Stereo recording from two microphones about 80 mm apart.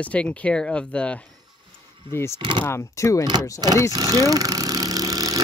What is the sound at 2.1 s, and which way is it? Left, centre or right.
Speech, left.